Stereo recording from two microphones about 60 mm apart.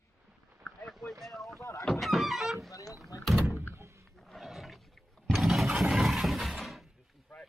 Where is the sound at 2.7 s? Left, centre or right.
Left.